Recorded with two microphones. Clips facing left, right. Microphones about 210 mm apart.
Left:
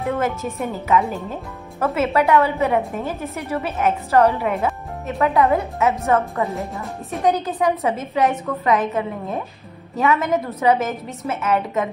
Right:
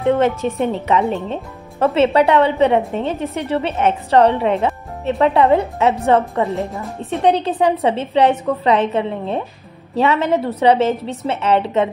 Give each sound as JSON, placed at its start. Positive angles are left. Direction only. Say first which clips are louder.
{"t": 0.0, "sound": "a woman's voice", "louder": "right 7 dB", "side_deg": -30}
{"t": 6.4, "sound": "a woman's voice", "louder": "right 4 dB", "side_deg": 0}
{"t": 7.1, "sound": "a woman's voice", "louder": "right 4 dB", "side_deg": -30}